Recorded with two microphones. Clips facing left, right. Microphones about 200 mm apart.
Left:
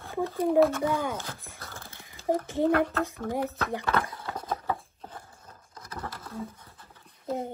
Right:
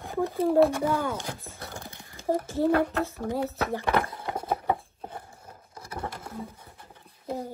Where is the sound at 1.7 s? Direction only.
15° right (ahead or behind).